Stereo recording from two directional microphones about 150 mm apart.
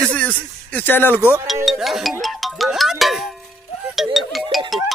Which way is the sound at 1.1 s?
15° right (ahead or behind).